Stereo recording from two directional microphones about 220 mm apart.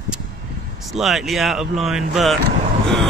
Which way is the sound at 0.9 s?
Centre (ahead or behind).